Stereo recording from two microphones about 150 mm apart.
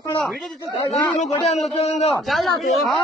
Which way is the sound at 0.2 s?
Centre (ahead or behind).